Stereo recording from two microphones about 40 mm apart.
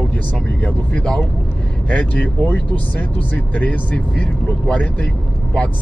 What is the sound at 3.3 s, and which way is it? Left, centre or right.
Speech, left.